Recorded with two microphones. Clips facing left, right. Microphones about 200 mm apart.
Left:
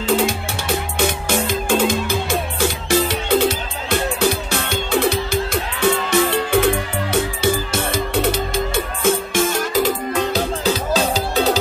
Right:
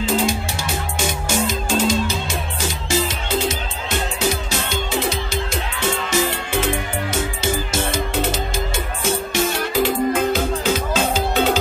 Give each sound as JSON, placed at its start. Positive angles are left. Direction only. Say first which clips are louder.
{"t": 0.0, "sound": "music", "louder": "left 2 dB", "side_deg": 60}